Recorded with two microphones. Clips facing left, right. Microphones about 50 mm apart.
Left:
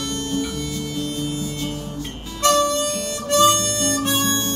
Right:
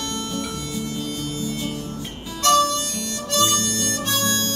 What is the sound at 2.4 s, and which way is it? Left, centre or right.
Harmonica, left.